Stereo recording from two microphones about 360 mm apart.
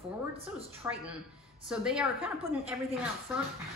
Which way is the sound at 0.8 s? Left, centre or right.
Centre.